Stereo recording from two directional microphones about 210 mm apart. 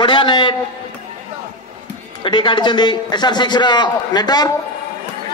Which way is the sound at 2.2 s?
20° left (ahead or behind).